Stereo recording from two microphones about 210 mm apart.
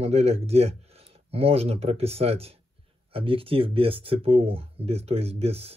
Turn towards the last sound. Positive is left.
turn(degrees=-30)  # may be behind; listen again after turning